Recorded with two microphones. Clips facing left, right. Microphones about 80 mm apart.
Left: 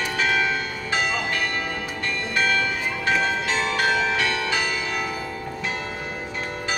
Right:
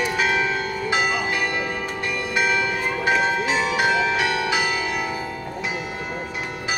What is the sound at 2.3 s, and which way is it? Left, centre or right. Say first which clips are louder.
Music: right 1 dB; centre.